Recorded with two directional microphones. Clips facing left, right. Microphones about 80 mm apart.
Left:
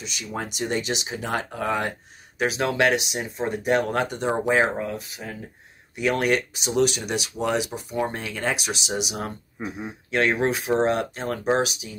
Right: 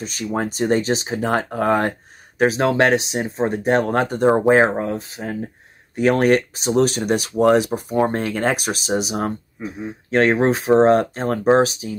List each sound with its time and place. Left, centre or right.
0.0 s speech: right